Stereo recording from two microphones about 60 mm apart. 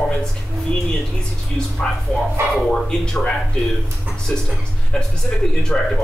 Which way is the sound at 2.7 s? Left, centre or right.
Centre.